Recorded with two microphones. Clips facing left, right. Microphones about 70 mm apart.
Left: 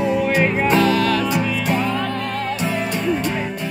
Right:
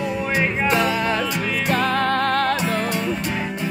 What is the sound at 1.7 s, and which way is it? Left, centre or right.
Music, right.